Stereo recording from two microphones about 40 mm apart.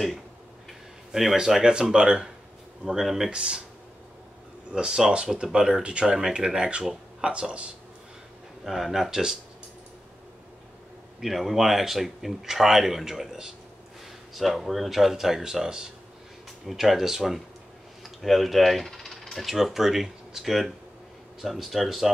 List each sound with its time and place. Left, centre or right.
1.3 s speech: centre
3.3 s speech: right
4.7 s speech: centre
8.6 s speech: centre
11.1 s speech: centre